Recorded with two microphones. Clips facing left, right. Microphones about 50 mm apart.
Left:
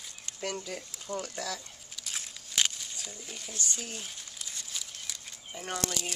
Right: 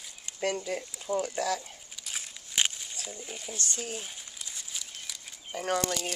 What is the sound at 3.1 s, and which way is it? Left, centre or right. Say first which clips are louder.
Speech: right 3 dB; centre.